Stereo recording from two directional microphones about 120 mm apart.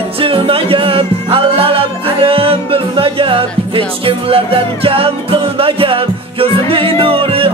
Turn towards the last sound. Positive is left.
turn(degrees=-50)  # may be behind; listen again after turning